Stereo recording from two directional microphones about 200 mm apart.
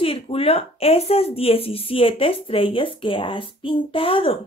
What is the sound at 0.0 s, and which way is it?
Speech, 30° left (ahead or behind).